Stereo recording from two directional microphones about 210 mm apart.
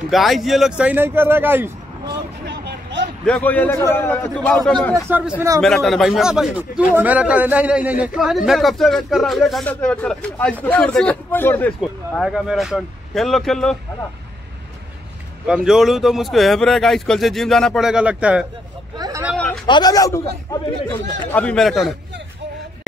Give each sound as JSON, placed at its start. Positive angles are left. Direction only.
{"t": 0.1, "sound": "speech", "side_deg": 0}
{"t": 2.4, "sound": "a sound", "side_deg": -55}
{"t": 3.3, "sound": "a man's voice", "side_deg": 5}
{"t": 15.4, "sound": "speech", "side_deg": -5}
{"t": 18.9, "sound": "vehicle", "side_deg": -20}
{"t": 19.3, "sound": "a sound", "side_deg": 5}
{"t": 19.6, "sound": "a man's voice", "side_deg": 20}
{"t": 21.3, "sound": "speech", "side_deg": 5}